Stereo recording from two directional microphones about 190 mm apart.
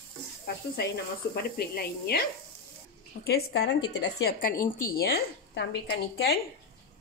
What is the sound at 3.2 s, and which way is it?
A woman's voice, 60° left (ahead or behind).